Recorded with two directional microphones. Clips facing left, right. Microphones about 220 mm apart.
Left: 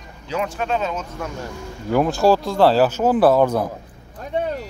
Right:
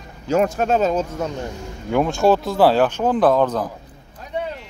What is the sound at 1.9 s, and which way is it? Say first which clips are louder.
Speech: even; centre (ahead or behind).